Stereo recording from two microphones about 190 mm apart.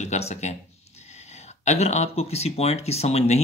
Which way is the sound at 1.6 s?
35° left (ahead or behind).